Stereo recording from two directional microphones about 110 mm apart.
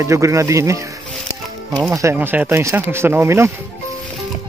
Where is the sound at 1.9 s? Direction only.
25° right (ahead or behind).